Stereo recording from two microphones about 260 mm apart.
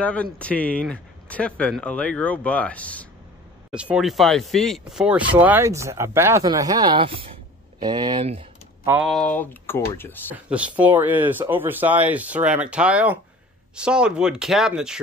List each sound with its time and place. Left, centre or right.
0.0 s speech: centre; by 8.5 s right
8.8 s speech: centre
10.3 s speech: centre